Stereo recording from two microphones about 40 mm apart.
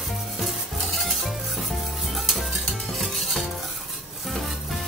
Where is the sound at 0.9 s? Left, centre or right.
Centre.